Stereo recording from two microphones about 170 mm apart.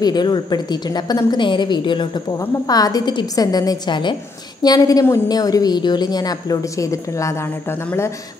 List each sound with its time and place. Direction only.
0.0 s a woman's voice: 25° left (ahead or behind)